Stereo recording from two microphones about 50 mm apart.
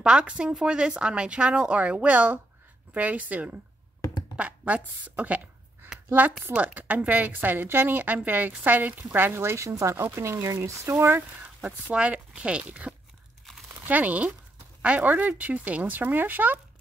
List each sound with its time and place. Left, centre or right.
0.0 s speech: right
9.4 s speech: right
10.0 s speech: right
11.6 s speech: right